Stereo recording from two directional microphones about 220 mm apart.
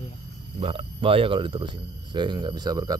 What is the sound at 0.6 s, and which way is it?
Speech, 25° right (ahead or behind).